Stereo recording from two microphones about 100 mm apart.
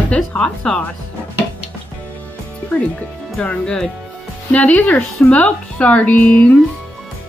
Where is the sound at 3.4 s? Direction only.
10° left (ahead or behind).